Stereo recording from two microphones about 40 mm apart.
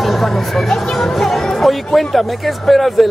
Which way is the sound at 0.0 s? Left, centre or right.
Centre.